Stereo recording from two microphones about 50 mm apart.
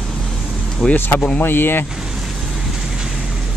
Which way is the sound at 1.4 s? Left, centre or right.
Left.